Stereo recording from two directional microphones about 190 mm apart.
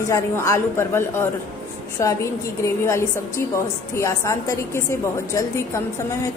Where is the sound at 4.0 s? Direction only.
15° left (ahead or behind).